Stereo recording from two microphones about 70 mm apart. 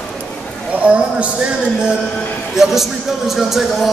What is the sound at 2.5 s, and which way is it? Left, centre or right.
A man's voice, centre.